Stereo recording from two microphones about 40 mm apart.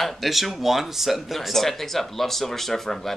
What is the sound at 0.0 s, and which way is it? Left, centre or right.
Speech, centre.